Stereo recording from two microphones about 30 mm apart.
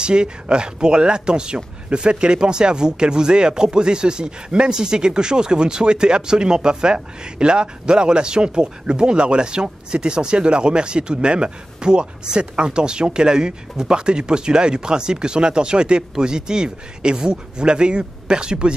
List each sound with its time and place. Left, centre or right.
0.0 s speech: right